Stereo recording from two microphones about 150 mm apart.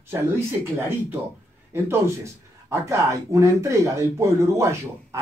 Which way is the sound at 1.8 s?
15° right (ahead or behind).